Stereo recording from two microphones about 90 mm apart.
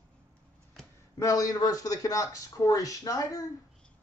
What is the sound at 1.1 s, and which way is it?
A man's voice, 40° left (ahead or behind).